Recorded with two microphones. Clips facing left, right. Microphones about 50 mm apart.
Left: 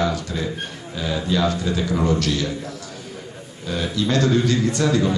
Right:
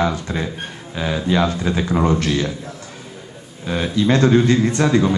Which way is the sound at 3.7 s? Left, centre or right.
Right.